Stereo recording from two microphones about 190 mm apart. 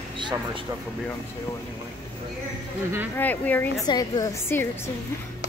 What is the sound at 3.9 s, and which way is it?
A woman's voice, 20° left (ahead or behind).